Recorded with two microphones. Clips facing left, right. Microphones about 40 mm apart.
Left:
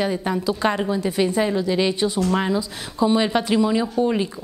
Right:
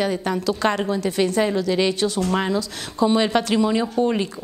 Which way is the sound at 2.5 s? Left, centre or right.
Right.